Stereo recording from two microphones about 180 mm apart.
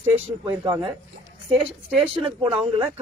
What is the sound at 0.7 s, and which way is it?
Speech, 30° right (ahead or behind).